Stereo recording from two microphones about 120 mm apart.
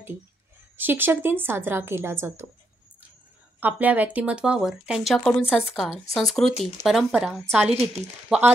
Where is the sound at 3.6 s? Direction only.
15° right (ahead or behind).